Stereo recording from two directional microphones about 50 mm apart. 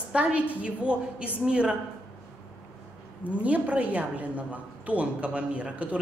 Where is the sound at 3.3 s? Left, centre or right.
Right.